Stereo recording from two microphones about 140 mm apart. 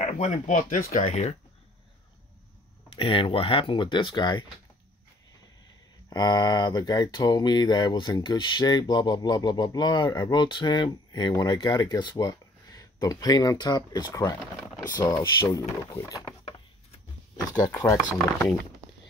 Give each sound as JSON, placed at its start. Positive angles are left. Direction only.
{"t": 0.0, "sound": "speech", "side_deg": 60}
{"t": 3.0, "sound": "speech", "side_deg": 40}
{"t": 6.0, "sound": "speech", "side_deg": 30}
{"t": 17.5, "sound": "speech", "side_deg": 30}